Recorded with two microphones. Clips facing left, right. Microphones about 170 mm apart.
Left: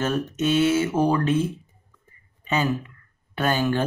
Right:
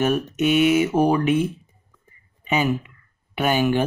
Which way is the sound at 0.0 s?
15° right (ahead or behind).